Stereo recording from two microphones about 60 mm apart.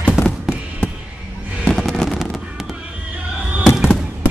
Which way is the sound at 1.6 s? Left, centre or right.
Centre.